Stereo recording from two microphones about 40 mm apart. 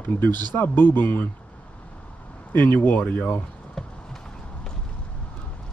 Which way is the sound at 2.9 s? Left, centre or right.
Left.